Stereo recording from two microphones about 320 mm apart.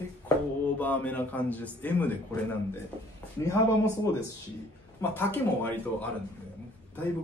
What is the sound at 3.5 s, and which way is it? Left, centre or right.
A man's voice, centre.